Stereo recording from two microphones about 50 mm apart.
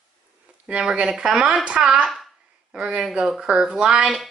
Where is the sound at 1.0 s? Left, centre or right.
Centre.